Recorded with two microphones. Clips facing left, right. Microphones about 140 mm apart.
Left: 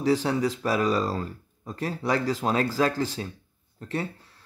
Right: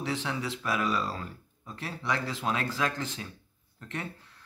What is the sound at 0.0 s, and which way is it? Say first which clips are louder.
Speech: left 9 dB; 40° left (ahead or behind).